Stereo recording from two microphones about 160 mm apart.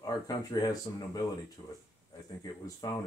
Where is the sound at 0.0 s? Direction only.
25° left (ahead or behind).